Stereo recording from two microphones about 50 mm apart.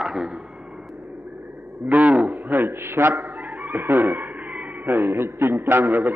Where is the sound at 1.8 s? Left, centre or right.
Right.